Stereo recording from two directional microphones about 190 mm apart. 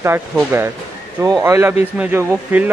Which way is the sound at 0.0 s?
10° right (ahead or behind).